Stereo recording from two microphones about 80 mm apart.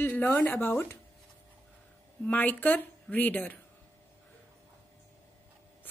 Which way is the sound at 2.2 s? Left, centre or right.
Left.